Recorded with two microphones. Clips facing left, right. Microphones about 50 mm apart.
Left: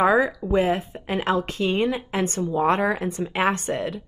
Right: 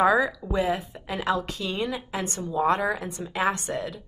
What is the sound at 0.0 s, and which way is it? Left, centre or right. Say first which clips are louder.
Speech: left 2 dB; left.